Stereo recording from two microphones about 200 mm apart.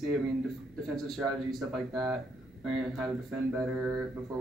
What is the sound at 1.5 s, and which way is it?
Speech, centre (ahead or behind).